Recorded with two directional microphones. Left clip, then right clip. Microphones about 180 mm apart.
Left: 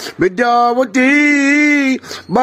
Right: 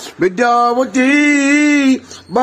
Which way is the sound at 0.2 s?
25° left (ahead or behind).